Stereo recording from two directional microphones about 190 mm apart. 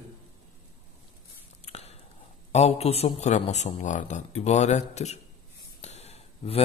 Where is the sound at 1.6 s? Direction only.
35° left (ahead or behind).